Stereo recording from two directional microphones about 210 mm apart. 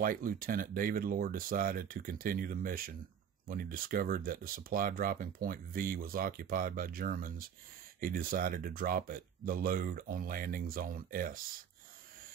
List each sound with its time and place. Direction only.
0.0 s speech: 40° right (ahead or behind)